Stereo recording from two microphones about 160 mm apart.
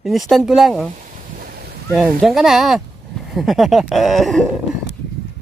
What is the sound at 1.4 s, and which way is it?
Boat, 70° right (ahead or behind).